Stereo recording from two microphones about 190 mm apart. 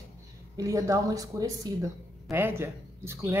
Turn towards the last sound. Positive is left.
turn(degrees=-15)  # may be behind; listen again after turning